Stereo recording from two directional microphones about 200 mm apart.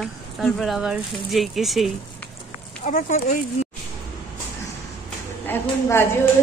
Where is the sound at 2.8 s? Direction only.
40° left (ahead or behind).